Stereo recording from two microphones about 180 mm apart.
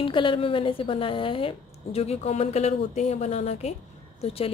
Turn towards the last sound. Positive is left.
turn(degrees=35)  # may be behind; listen again after turning